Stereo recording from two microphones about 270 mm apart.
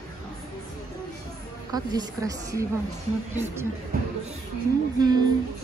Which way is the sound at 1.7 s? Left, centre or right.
Centre.